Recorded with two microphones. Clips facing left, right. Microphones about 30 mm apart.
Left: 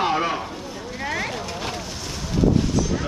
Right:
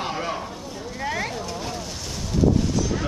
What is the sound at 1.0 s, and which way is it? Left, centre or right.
Vehicle, centre.